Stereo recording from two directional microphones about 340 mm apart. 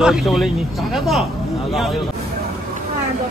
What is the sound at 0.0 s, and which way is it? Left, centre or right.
Speech, centre.